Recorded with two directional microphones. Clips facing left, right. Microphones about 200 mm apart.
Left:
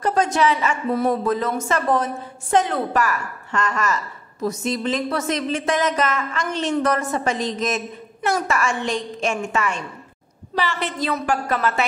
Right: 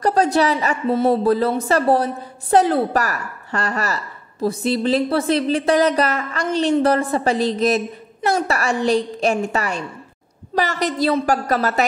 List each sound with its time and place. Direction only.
0.0 s a woman's voice: 35° right (ahead or behind)